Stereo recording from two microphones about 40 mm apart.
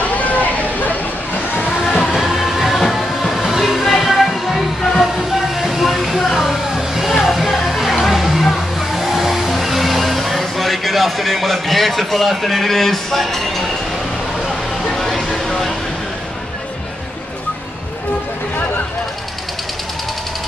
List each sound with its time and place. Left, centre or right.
0.2 s a sound: left
1.7 s music: centre
14.9 s vehicle: centre